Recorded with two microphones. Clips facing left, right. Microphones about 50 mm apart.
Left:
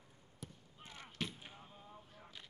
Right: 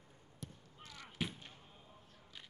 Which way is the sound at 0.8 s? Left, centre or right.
Left.